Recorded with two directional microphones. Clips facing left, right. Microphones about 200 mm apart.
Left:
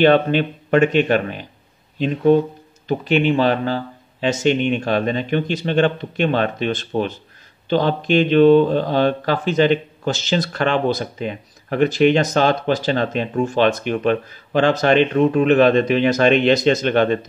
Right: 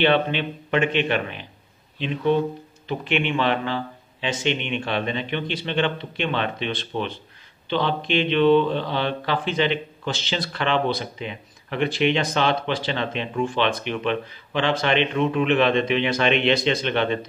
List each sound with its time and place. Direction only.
0.0 s speech: 45° left (ahead or behind)